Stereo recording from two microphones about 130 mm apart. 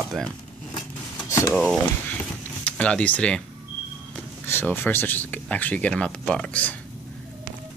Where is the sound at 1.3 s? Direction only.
20° left (ahead or behind).